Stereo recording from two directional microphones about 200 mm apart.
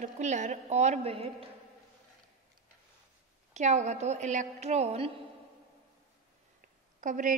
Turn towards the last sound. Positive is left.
turn(degrees=-40)  # may be behind; listen again after turning